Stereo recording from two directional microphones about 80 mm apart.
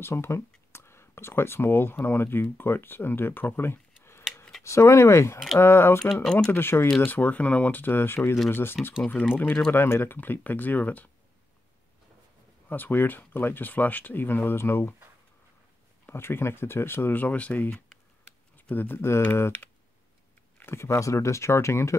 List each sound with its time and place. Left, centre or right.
0.0 s speech: left
12.6 s speech: left
16.1 s speech: left